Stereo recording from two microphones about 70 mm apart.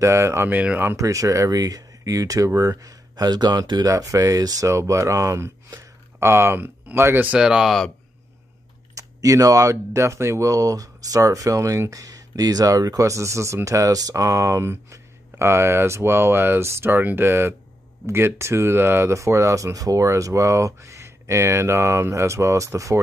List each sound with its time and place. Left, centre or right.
0.0 s speech: right
0.5 s speech: right
0.9 s speech: right
3.9 s speech: right
4.6 s speech: right
6.1 s speech: right
7.3 s speech: centre
8.9 s speech: right